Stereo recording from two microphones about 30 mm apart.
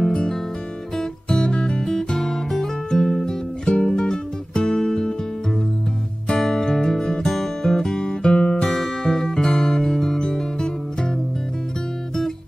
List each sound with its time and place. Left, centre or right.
1.4 s music: left
1.8 s music: centre
2.9 s guitar: centre
3.6 s music: left
6.4 s music: centre
8.1 s music: left
8.6 s music: centre